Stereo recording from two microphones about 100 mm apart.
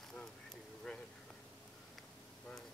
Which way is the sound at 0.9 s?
10° left (ahead or behind).